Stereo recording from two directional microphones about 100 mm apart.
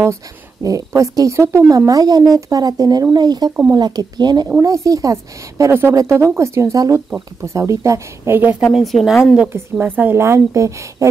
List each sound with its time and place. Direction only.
0.7 s speech: 35° right (ahead or behind)
4.6 s a woman's voice: 35° right (ahead or behind)
8.7 s speech: 5° right (ahead or behind)
9.5 s a woman's voice: 20° right (ahead or behind)